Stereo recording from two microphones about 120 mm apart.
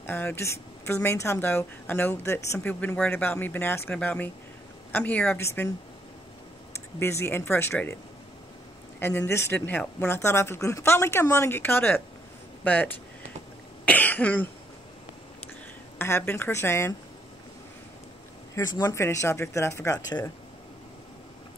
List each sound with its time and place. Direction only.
0.0 s speech: 15° left (ahead or behind)
7.0 s speech: 20° left (ahead or behind)
9.0 s speech: 20° left (ahead or behind)
13.8 s cough: 15° left (ahead or behind)
16.0 s speech: 20° left (ahead or behind)
18.5 s speech: 30° left (ahead or behind)
18.9 s speech: 20° left (ahead or behind)